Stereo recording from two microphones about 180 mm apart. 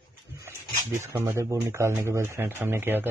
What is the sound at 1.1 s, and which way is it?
Speech, 15° right (ahead or behind).